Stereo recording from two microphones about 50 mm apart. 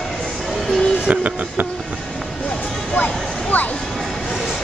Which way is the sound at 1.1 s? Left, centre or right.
Right.